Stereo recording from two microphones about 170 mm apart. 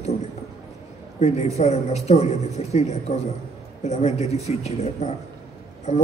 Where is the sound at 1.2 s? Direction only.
40° left (ahead or behind).